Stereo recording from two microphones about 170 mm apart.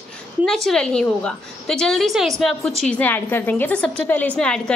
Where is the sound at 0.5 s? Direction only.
5° left (ahead or behind).